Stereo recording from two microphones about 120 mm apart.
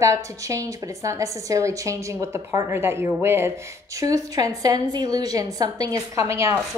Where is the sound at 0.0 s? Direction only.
25° right (ahead or behind).